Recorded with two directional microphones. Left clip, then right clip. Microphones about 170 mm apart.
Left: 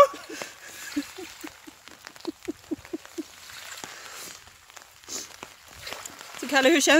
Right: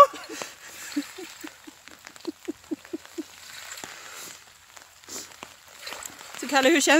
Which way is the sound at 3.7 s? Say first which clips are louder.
Left 1 dB; centre (ahead or behind).